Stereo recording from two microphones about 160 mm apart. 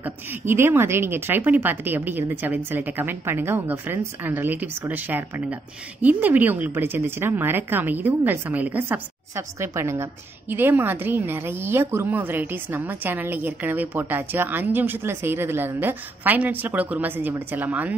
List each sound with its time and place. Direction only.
0.0 s speech: 15° right (ahead or behind)